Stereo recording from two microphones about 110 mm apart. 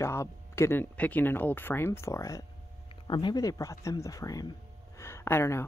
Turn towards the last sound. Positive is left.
turn(degrees=25)  # may be behind; listen again after turning